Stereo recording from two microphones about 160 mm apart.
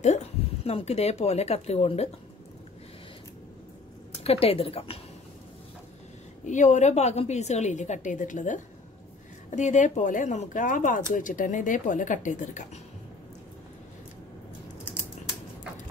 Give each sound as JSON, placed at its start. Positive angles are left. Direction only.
{"t": 0.0, "sound": "speech", "side_deg": 45}
{"t": 4.2, "sound": "a woman's voice", "side_deg": 40}
{"t": 6.4, "sound": "a woman's voice", "side_deg": 50}